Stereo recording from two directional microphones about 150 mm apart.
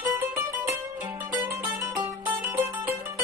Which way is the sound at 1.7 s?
20° right (ahead or behind).